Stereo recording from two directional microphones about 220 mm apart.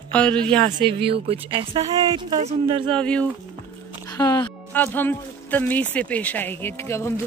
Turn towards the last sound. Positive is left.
turn(degrees=10)  # may be behind; listen again after turning